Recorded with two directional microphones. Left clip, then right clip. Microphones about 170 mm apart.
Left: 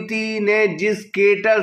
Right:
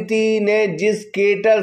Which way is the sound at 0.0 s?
35° right (ahead or behind).